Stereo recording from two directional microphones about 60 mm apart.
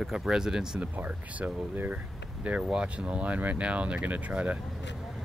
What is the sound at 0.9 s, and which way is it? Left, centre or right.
Speech, right.